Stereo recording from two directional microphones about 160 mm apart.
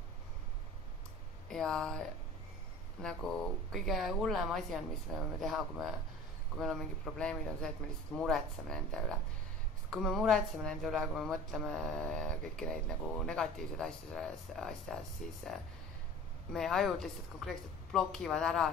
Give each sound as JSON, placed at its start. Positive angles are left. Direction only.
{"t": 1.5, "sound": "speech", "side_deg": 5}
{"t": 16.5, "sound": "speech", "side_deg": 0}